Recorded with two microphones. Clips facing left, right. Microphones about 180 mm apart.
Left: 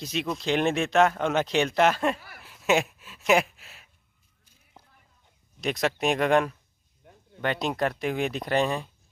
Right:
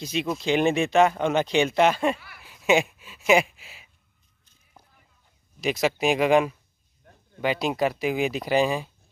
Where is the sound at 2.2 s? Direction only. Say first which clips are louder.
Left 2 dB; 40° left (ahead or behind).